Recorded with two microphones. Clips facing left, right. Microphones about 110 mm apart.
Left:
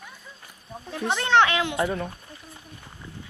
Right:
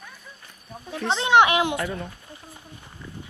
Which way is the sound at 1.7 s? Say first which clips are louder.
Left 2 dB; 25° left (ahead or behind).